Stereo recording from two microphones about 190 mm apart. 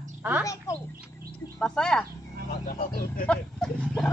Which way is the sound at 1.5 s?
5° left (ahead or behind).